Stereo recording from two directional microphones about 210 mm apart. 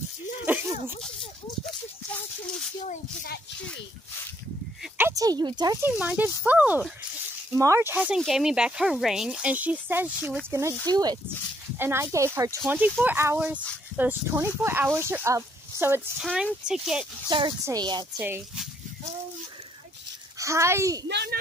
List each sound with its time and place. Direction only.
0.5 s a sound: 10° right (ahead or behind)
2.8 s a sound: 35° left (ahead or behind)
4.9 s speech: 15° right (ahead or behind)
16.3 s speech: centre (ahead or behind)
17.3 s speech: 25° right (ahead or behind)
18.1 s speech: 5° right (ahead or behind)
20.3 s a child's voice: 15° right (ahead or behind)
21.1 s speech: 50° right (ahead or behind)